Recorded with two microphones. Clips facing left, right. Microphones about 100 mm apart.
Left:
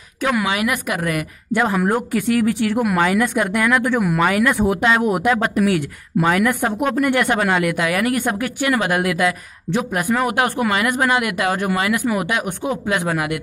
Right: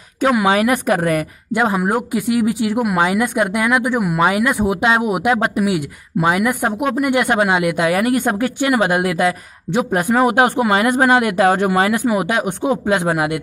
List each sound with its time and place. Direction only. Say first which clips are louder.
0.2 s a woman's voice: right 5 dB; 25° right (ahead or behind)
1.5 s speech: right 1 dB; 20° right (ahead or behind)
3.0 s speech: right 2 dB; 20° right (ahead or behind)
4.2 s speech: right 2 dB; 20° right (ahead or behind)